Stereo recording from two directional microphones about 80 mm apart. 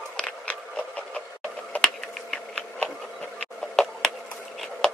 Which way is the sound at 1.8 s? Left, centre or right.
Centre.